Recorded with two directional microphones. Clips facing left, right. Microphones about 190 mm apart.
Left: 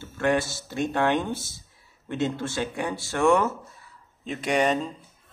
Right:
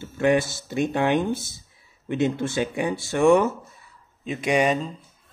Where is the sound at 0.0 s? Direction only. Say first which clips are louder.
Right 4 dB; 15° right (ahead or behind).